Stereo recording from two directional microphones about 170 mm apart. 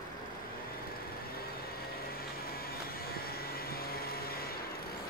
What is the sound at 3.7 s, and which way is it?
Vacuum cleaner, 65° left (ahead or behind).